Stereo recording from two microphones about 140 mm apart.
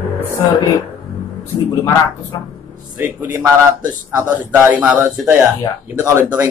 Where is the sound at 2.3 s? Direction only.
25° left (ahead or behind).